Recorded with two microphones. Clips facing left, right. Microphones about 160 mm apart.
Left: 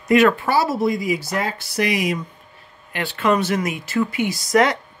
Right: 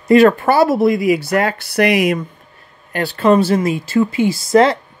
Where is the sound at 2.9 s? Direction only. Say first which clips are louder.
Right 7 dB; 35° right (ahead or behind).